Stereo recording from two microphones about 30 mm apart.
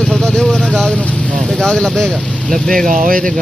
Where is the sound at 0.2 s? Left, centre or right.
Left.